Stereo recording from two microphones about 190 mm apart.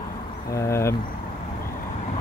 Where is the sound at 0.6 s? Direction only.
15° left (ahead or behind).